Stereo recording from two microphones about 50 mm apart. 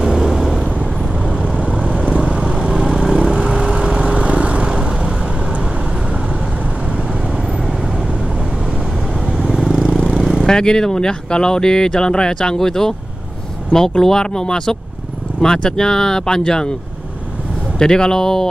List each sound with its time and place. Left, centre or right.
0.0 s vehicle: centre
1.6 s vehicle: right
9.4 s vehicle: centre
9.7 s vehicle: centre
10.4 s speech: centre
17.7 s speech: centre